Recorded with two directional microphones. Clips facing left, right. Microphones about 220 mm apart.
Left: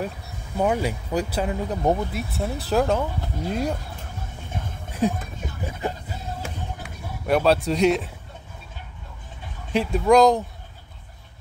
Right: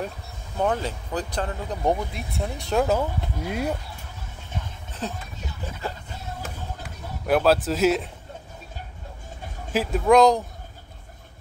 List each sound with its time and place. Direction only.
0.6 s speech: 10° left (ahead or behind); by 3.7 s 5° right (ahead or behind)
5.0 s speech: 10° left (ahead or behind)
5.8 s music: 15° left (ahead or behind)
7.2 s speech: centre (ahead or behind)
9.7 s speech: centre (ahead or behind)